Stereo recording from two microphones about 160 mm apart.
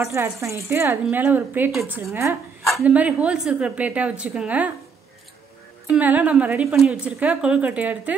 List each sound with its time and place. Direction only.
0.0 s a woman's voice: 15° right (ahead or behind)
1.7 s a woman's voice: centre (ahead or behind)
5.9 s a woman's voice: 10° right (ahead or behind)